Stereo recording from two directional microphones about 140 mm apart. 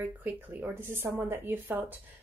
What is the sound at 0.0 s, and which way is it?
Speech, 10° right (ahead or behind).